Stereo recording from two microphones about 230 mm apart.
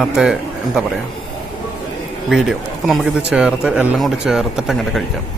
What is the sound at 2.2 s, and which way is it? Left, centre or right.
Speech, centre.